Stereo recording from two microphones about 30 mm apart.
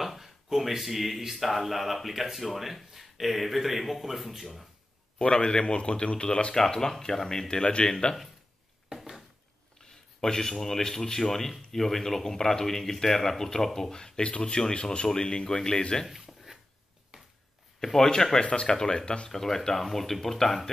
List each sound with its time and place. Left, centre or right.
0.0 s a sound: centre
1.3 s a man's voice: centre
5.2 s speech: left
6.5 s speech: centre
7.4 s speech: left
9.8 s speech: centre
16.3 s a sound: centre
17.1 s a sound: right
17.7 s speech: centre
18.4 s speech: left
19.8 s speech: centre